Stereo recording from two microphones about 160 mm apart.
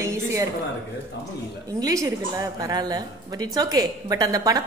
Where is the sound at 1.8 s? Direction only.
20° right (ahead or behind).